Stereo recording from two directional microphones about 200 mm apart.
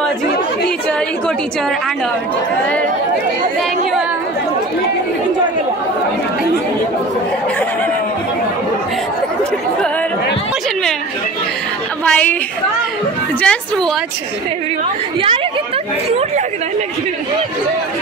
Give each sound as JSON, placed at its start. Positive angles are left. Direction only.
{"t": 12.0, "sound": "chatter", "side_deg": 5}
{"t": 13.4, "sound": "a woman's voice", "side_deg": 5}
{"t": 16.1, "sound": "speech", "side_deg": -30}